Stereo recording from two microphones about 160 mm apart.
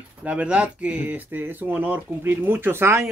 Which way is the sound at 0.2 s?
10° right (ahead or behind).